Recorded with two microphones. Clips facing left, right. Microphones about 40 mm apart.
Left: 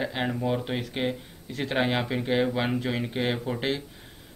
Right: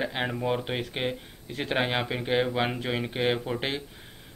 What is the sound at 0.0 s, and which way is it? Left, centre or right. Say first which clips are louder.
A man's voice: left 1 dB; centre.